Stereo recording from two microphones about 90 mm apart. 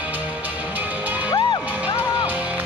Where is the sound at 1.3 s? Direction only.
55° left (ahead or behind).